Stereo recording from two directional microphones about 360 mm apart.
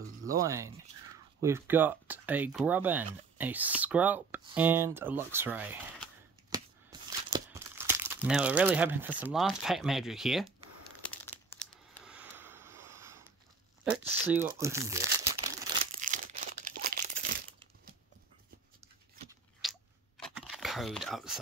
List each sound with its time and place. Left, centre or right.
0.3 s speech: centre
6.5 s crumpling: centre
11.6 s a sound: centre
14.2 s speech: centre
16.0 s crumpling: right
19.6 s chewing: centre
20.3 s a sound: centre